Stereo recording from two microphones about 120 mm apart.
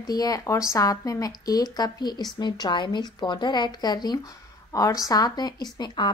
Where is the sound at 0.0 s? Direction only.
30° left (ahead or behind).